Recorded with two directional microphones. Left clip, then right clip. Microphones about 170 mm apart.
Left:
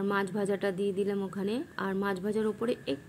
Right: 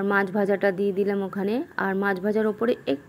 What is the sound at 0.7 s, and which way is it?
Speech, 45° right (ahead or behind).